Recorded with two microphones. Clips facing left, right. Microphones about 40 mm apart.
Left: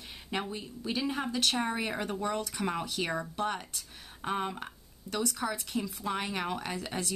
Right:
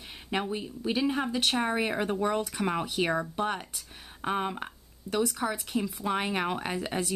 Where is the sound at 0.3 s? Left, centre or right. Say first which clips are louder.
Right 4 dB; centre.